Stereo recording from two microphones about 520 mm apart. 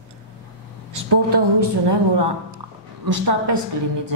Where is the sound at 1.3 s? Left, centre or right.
Right.